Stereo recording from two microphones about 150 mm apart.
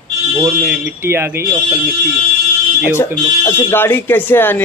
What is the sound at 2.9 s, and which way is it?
Speech, 15° left (ahead or behind).